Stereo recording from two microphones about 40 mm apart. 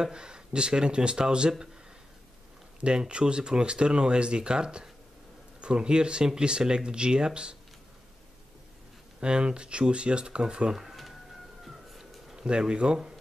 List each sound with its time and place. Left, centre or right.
0.0 s speech: right
2.8 s speech: right
9.2 s speech: right
10.8 s a sound: centre
11.6 s music: centre
12.4 s speech: right